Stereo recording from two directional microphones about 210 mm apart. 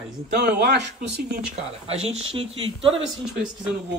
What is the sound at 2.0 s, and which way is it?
Speech, 30° right (ahead or behind).